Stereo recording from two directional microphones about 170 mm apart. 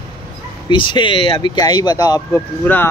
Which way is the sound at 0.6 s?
30° left (ahead or behind).